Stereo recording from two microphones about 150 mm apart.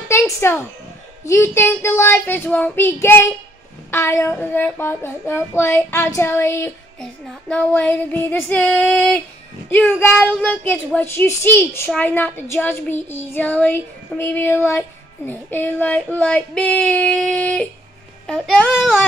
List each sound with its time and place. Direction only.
0.1 s a sound: 15° left (ahead or behind)
1.2 s child singing: 15° left (ahead or behind)
7.0 s child singing: 5° left (ahead or behind)
18.2 s a child's voice: 5° left (ahead or behind)